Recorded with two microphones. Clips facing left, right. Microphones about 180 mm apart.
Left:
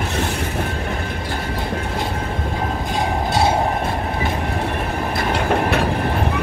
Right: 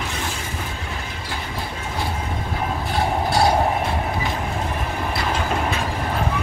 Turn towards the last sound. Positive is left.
turn(degrees=65)  # may be behind; listen again after turning